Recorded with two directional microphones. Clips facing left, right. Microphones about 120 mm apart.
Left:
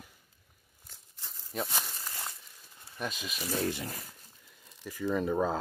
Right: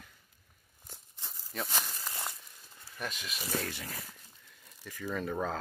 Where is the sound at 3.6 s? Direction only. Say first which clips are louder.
Left 7 dB; 20° left (ahead or behind).